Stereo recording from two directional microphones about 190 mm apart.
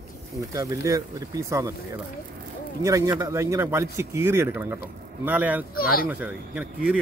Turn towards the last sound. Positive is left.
turn(degrees=-5)  # may be behind; listen again after turning